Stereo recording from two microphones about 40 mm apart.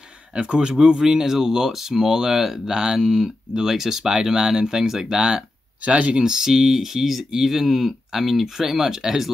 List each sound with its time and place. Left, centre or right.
0.4 s speech: right
5.9 s speech: right
6.2 s speech: centre